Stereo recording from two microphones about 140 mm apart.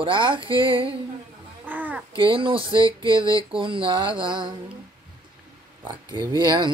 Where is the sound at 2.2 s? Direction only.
40° right (ahead or behind).